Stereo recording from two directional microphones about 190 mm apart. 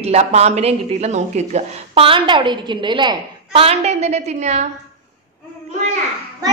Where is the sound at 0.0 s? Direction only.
35° right (ahead or behind).